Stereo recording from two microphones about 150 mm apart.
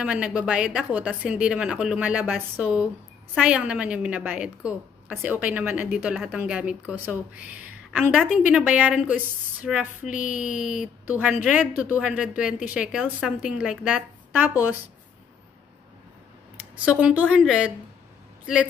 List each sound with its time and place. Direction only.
0.0 s speech: 5° right (ahead or behind)
10.0 s speech: 60° left (ahead or behind)
10.8 s speech: 10° right (ahead or behind)
16.5 s speech: 10° right (ahead or behind)